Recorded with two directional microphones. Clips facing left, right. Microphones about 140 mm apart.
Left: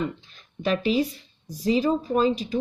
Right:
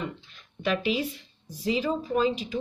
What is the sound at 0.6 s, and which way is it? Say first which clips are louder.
Speech: left 4 dB; 35° left (ahead or behind).